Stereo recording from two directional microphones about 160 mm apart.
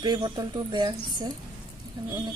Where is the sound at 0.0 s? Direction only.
25° right (ahead or behind).